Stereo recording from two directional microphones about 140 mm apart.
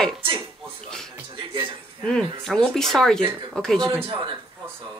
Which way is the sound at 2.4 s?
5° left (ahead or behind).